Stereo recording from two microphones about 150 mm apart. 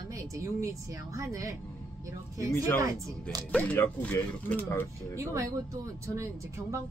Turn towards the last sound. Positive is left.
turn(degrees=-20)  # may be behind; listen again after turning